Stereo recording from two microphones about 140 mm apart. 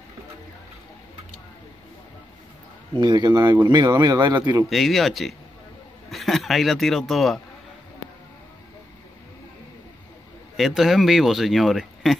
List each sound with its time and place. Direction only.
3.0 s speech: 30° right (ahead or behind)
4.6 s speech: centre (ahead or behind)
10.5 s speech: centre (ahead or behind)